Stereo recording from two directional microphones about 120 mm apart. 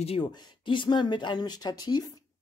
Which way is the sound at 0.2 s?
35° left (ahead or behind).